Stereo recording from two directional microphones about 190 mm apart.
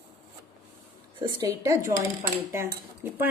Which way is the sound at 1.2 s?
15° right (ahead or behind).